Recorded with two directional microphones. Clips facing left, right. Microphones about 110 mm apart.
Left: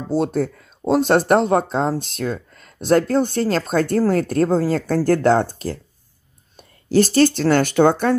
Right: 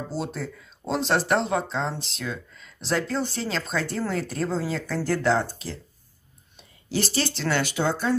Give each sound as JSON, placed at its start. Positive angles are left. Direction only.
{"t": 0.1, "sound": "speech", "side_deg": 50}